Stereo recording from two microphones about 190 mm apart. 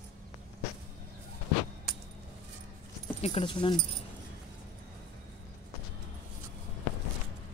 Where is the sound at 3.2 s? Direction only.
30° left (ahead or behind).